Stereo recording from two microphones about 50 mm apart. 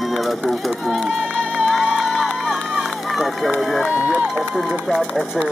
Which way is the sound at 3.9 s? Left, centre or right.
Right.